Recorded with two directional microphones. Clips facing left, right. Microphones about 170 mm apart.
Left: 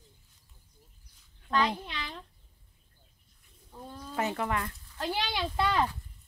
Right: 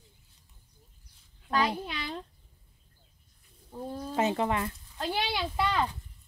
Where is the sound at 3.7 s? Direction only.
30° right (ahead or behind); by 5.2 s 15° right (ahead or behind).